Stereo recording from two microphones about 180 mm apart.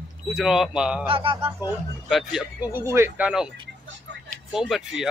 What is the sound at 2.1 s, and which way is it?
Speech, centre (ahead or behind).